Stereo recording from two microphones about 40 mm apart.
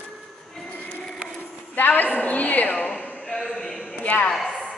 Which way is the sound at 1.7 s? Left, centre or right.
Left.